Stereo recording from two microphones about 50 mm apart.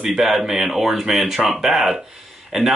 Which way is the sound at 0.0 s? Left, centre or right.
Centre.